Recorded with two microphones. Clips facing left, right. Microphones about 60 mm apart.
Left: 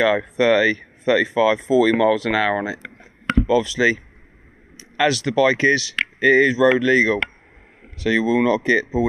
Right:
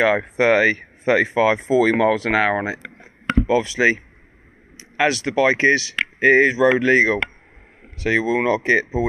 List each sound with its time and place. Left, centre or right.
0.0 s speech: right